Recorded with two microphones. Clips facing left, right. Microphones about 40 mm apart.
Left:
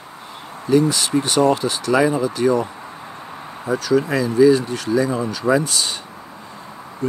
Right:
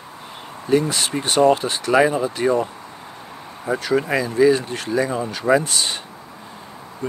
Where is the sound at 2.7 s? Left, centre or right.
Centre.